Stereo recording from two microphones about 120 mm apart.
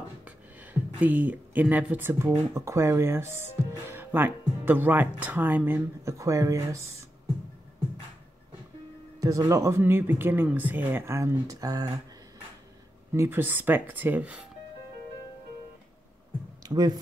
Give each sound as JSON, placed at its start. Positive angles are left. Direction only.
{"t": 0.6, "sound": "speech", "side_deg": -15}
{"t": 9.2, "sound": "speech", "side_deg": -30}
{"t": 13.1, "sound": "speech", "side_deg": -20}
{"t": 16.6, "sound": "speech", "side_deg": -35}